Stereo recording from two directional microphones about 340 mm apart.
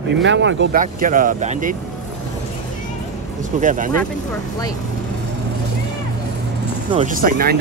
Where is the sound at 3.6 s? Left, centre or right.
Right.